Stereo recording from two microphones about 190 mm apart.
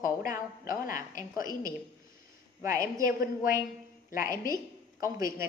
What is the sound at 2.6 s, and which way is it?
Speech, 15° right (ahead or behind).